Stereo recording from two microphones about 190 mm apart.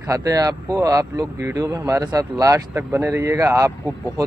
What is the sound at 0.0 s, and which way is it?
Speech, 20° right (ahead or behind).